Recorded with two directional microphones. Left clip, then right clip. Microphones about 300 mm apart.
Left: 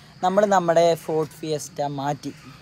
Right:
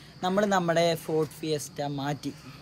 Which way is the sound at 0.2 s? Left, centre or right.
Centre.